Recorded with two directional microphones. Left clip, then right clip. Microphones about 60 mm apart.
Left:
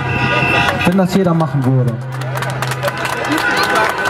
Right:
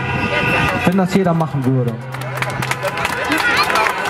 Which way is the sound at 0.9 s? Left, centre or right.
Right.